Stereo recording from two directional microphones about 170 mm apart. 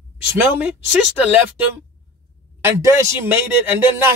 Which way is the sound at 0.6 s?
10° right (ahead or behind).